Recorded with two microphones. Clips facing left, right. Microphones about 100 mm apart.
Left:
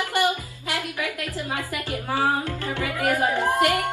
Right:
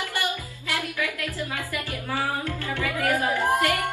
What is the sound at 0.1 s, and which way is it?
Speech, 20° left (ahead or behind).